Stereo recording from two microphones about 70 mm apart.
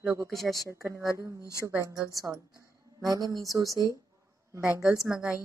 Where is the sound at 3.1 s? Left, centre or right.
Right.